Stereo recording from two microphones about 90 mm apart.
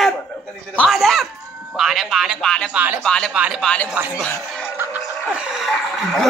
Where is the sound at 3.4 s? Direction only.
10° right (ahead or behind).